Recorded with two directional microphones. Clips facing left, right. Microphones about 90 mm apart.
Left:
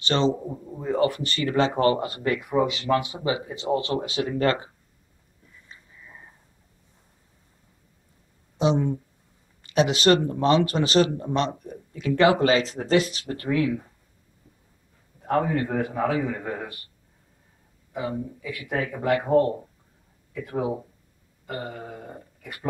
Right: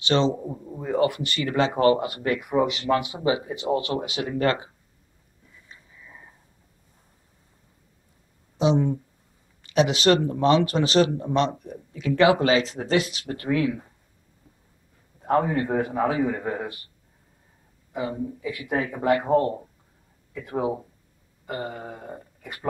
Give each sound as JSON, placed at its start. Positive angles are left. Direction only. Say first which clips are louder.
{"t": 0.0, "sound": "speech", "louder": "right 1 dB", "side_deg": -5}
{"t": 5.7, "sound": "a sound", "louder": "left 1 dB", "side_deg": 0}
{"t": 8.5, "sound": "a man's voice", "louder": "right 1 dB", "side_deg": 0}
{"t": 15.2, "sound": "speech", "louder": "right 1 dB", "side_deg": -15}
{"t": 17.9, "sound": "speech", "louder": "right 1 dB", "side_deg": -15}
{"t": 21.5, "sound": "a sound", "louder": "right 2 dB", "side_deg": -20}